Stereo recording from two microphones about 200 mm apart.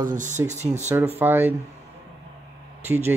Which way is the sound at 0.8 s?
10° right (ahead or behind).